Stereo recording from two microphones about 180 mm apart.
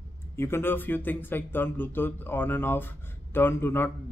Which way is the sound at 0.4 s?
10° left (ahead or behind).